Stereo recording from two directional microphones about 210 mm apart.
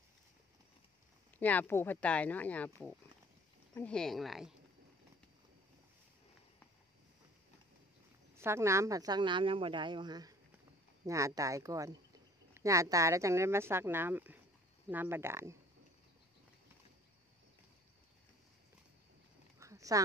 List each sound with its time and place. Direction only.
1.4 s speech: 10° left (ahead or behind)
8.4 s speech: 15° right (ahead or behind)
19.6 s a sound: 15° right (ahead or behind)